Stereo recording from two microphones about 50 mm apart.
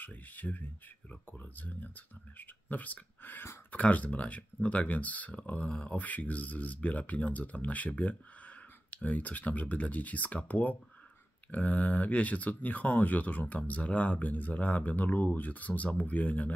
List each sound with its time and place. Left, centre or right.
0.0 s speech: left